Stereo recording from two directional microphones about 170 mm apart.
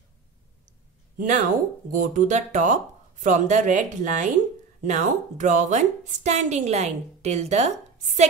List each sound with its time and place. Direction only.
1.1 s a woman's voice: 45° right (ahead or behind)